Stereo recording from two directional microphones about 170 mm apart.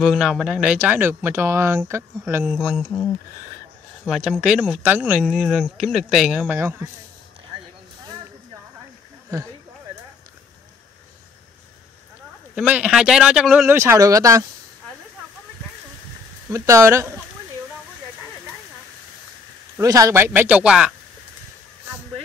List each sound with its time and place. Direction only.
0.0 s speech: centre (ahead or behind)
4.1 s speech: 5° right (ahead or behind)
9.3 s speech: 20° right (ahead or behind)
12.5 s speech: 5° right (ahead or behind)
13.7 s speech: 20° right (ahead or behind)
16.4 s speech: 20° right (ahead or behind)
19.8 s speech: 20° right (ahead or behind)